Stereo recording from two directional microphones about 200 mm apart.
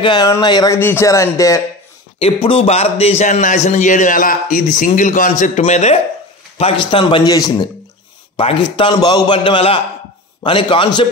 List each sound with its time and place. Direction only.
0.0 s speech: 20° left (ahead or behind)
2.1 s a man's voice: 30° left (ahead or behind)